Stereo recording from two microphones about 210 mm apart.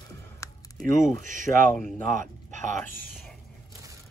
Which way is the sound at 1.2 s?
40° right (ahead or behind).